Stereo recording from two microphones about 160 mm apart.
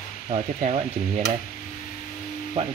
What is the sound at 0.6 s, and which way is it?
Speech, 40° right (ahead or behind).